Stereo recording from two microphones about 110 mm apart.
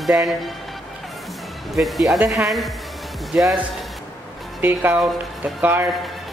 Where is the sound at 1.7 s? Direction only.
Centre (ahead or behind).